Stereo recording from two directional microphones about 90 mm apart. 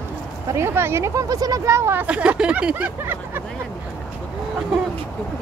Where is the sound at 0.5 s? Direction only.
30° right (ahead or behind).